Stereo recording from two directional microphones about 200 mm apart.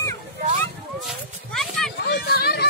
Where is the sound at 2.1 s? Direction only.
50° left (ahead or behind).